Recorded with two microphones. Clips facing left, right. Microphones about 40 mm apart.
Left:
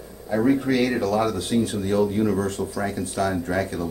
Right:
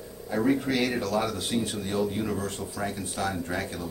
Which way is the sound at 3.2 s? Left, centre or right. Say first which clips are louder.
Left 6 dB; left.